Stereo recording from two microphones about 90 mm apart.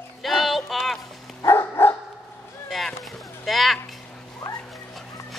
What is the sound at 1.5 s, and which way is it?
Dog, 30° left (ahead or behind).